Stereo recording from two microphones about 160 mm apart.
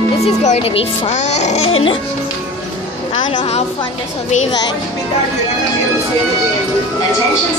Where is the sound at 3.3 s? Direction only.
40° left (ahead or behind).